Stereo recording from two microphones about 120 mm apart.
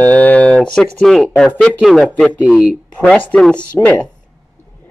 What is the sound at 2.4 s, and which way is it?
Speech, 10° right (ahead or behind).